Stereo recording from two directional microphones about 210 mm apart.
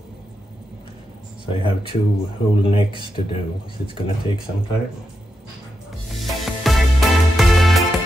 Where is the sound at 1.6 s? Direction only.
25° left (ahead or behind).